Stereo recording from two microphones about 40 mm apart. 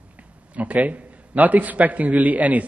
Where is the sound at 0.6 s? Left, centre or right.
Right.